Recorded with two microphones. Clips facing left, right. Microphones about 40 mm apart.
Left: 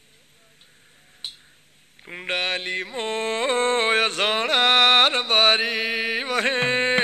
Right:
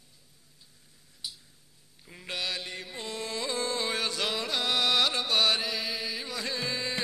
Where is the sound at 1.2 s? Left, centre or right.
Left.